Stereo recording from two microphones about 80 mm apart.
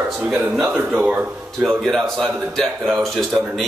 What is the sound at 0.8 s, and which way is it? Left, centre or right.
Speech, right.